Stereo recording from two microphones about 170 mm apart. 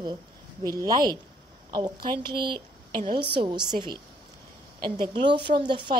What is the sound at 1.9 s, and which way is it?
Speech, 65° right (ahead or behind).